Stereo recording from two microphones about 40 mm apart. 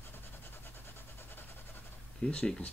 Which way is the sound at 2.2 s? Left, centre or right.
Left.